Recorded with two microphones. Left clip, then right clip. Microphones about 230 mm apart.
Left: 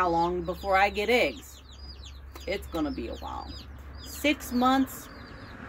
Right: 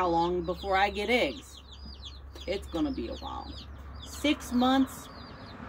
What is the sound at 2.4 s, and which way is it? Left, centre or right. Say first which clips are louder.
Speech: left 1 dB; centre.